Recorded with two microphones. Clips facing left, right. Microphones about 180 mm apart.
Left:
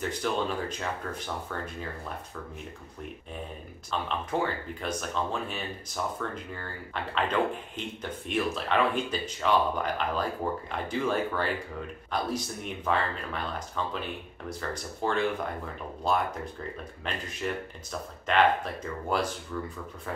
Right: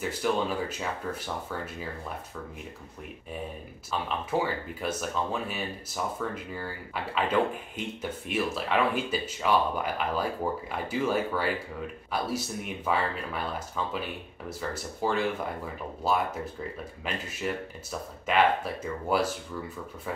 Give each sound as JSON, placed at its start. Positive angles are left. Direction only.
{"t": 0.0, "sound": "speech", "side_deg": -5}
{"t": 4.3, "sound": "speech", "side_deg": -5}